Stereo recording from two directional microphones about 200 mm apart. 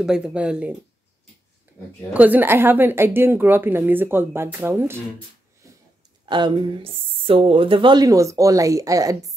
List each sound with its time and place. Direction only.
0.0 s speech: 5° right (ahead or behind)
1.7 s a sound: 10° right (ahead or behind)
2.1 s a woman's voice: 10° right (ahead or behind)
6.2 s speech: 25° right (ahead or behind)